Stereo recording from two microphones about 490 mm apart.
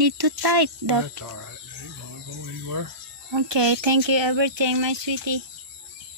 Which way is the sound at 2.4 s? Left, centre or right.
Right.